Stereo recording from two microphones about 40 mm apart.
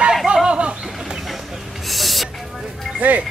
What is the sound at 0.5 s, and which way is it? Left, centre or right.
Bird, right.